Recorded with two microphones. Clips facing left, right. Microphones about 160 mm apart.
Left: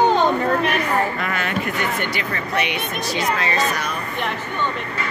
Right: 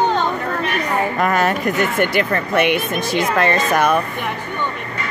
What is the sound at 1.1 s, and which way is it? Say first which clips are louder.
Speech: right 7 dB; 45° right (ahead or behind).